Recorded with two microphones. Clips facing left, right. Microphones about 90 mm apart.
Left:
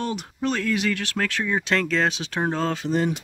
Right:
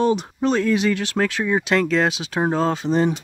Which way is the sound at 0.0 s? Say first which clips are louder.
Right 8 dB; 25° right (ahead or behind).